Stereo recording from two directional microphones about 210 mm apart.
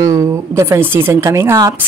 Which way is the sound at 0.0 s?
15° right (ahead or behind).